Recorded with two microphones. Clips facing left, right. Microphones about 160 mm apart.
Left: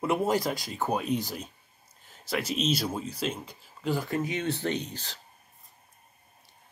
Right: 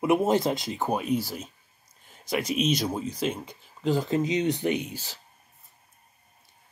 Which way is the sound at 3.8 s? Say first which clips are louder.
Right 4 dB; 20° right (ahead or behind).